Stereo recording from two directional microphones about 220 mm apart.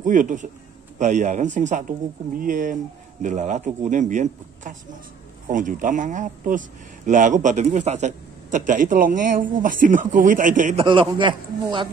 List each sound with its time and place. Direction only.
0.0 s speech: 35° right (ahead or behind)
10.9 s a man's voice: 20° right (ahead or behind)